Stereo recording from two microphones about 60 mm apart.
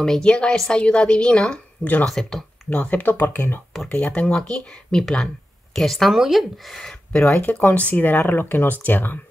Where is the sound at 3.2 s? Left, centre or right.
Left.